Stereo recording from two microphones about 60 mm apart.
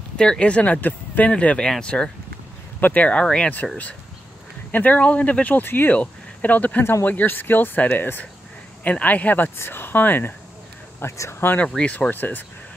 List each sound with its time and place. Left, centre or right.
0.2 s speech: centre
2.8 s speech: left
3.6 s speech: centre
4.6 s speech: left
6.8 s speech: left
7.1 s speech: left
9.6 s speech: left
11.0 s speech: left
11.6 s speech: centre